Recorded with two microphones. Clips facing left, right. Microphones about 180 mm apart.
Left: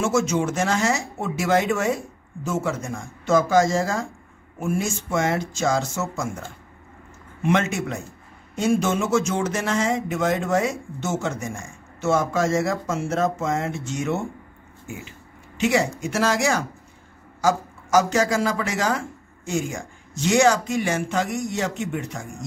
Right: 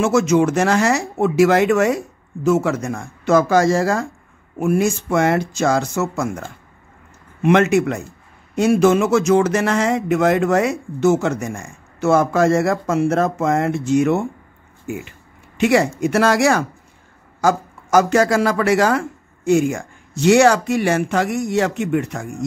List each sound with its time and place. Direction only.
0.0 s speech: 65° right (ahead or behind)
7.4 s speech: 70° right (ahead or behind)
15.0 s a sound: 60° right (ahead or behind)
16.0 s speech: 60° right (ahead or behind)